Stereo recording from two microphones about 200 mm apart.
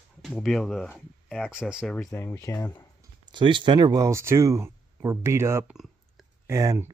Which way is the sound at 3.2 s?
25° right (ahead or behind).